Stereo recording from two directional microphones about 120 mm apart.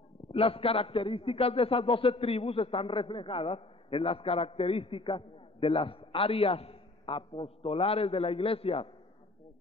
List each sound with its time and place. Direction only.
0.3 s a man's voice: 50° left (ahead or behind)